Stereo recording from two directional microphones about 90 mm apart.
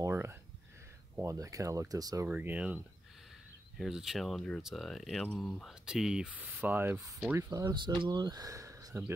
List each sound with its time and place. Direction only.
0.0 s a sound: 30° right (ahead or behind)
1.2 s speech: 40° right (ahead or behind)
2.2 s speech: 15° right (ahead or behind)
3.7 s speech: 5° right (ahead or behind)
6.6 s speech: 25° right (ahead or behind)
7.4 s speech: 55° right (ahead or behind); by 9.0 s 35° right (ahead or behind)